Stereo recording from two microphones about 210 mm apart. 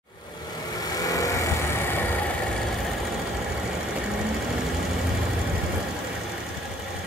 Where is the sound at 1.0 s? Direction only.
15° left (ahead or behind).